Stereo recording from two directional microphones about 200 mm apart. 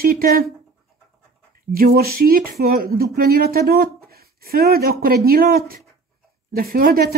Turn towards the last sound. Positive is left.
turn(degrees=-50)  # may be behind; listen again after turning